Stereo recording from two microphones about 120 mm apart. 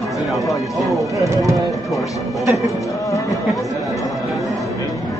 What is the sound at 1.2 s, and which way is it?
Speech, 25° right (ahead or behind).